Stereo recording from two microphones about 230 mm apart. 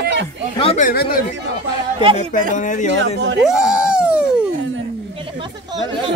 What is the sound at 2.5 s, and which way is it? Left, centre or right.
Speech, left.